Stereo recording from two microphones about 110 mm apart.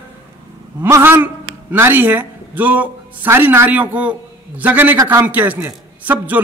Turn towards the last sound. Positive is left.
turn(degrees=-15)  # may be behind; listen again after turning